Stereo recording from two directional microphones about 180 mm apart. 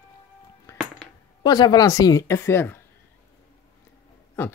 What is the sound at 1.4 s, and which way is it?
A woman's voice, 20° left (ahead or behind).